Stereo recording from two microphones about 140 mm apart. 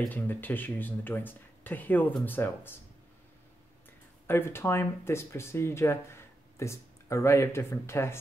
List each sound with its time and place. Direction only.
0.1 s speech: 15° left (ahead or behind)
4.3 s speech: 15° left (ahead or behind)